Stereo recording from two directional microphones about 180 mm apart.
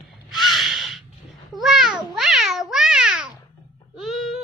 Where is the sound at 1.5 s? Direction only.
Centre (ahead or behind).